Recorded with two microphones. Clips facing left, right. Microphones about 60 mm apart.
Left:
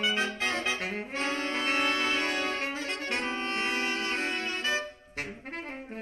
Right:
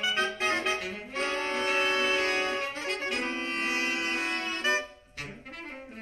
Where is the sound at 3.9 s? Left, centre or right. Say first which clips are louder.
Even; right.